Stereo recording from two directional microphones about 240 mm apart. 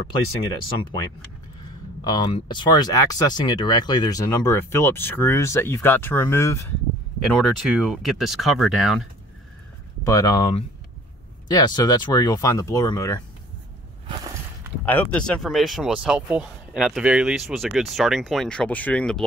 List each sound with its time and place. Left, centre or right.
2.0 s speech: centre
7.2 s speech: centre
10.0 s speech: centre
14.0 s walk: centre
14.9 s speech: centre